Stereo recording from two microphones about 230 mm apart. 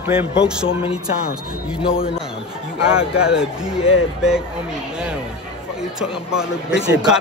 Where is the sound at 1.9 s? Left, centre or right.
Left.